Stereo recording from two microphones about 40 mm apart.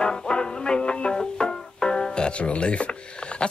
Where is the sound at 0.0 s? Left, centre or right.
Left.